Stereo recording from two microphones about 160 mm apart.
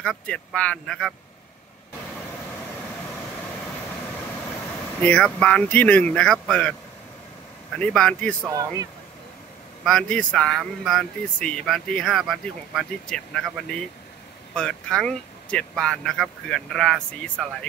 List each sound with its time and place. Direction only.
0.0 s speech: 5° left (ahead or behind)
5.0 s speech: 5° left (ahead or behind)
7.8 s speech: 5° left (ahead or behind)
8.5 s speech: 20° right (ahead or behind)
9.8 s speech: 5° left (ahead or behind)